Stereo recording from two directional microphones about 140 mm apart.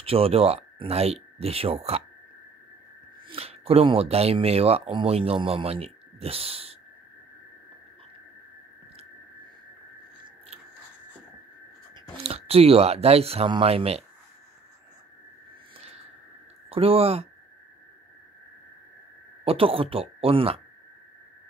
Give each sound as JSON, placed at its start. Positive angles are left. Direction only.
{"t": 0.0, "sound": "speech", "side_deg": -45}
{"t": 3.3, "sound": "speech", "side_deg": -45}
{"t": 12.2, "sound": "speech", "side_deg": -45}
{"t": 15.8, "sound": "a sound", "side_deg": -50}
{"t": 16.6, "sound": "speech", "side_deg": -45}
{"t": 19.4, "sound": "speech", "side_deg": -40}